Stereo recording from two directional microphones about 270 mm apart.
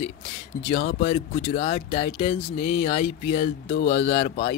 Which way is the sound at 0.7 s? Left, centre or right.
Left.